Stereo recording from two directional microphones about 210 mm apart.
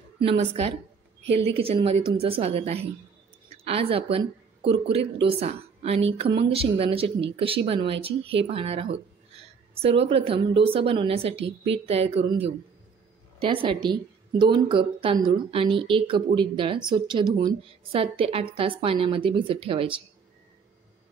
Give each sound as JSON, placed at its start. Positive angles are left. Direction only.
{"t": 0.2, "sound": "a woman's voice", "side_deg": -30}
{"t": 13.4, "sound": "a woman's voice", "side_deg": -25}